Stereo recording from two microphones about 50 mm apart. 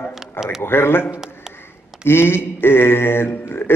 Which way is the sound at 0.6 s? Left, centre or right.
Left.